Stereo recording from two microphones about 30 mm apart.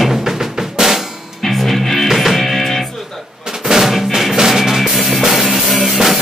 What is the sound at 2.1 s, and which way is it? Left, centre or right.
Music, centre.